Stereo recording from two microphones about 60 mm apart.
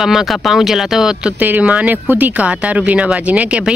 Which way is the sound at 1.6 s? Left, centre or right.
Right.